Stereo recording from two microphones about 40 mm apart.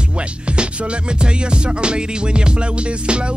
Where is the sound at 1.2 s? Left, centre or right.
Right.